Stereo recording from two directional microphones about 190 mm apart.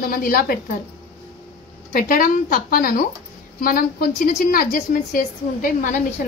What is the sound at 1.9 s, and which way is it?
A woman's voice, 45° left (ahead or behind).